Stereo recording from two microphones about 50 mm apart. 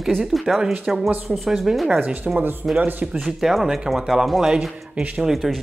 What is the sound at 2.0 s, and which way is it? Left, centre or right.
Speech, right.